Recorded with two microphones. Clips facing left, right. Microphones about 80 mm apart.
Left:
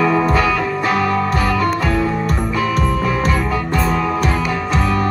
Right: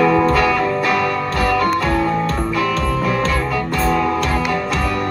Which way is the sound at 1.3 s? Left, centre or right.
Right.